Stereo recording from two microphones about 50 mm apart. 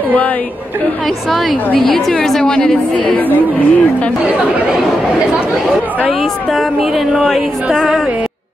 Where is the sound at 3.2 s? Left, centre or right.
Left.